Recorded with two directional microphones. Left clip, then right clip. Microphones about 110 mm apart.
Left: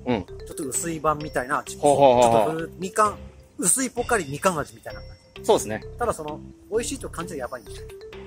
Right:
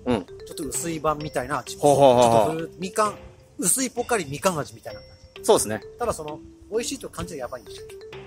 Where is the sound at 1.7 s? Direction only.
30° right (ahead or behind).